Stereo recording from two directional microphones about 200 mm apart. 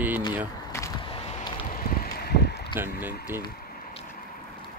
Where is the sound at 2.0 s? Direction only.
55° left (ahead or behind).